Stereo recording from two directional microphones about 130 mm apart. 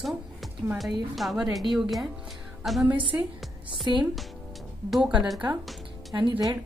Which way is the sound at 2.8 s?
40° right (ahead or behind).